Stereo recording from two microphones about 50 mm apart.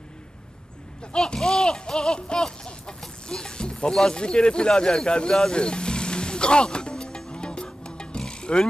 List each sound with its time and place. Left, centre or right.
1.1 s speech: centre
3.3 s a sound: centre
3.9 s speech: centre
5.5 s music: centre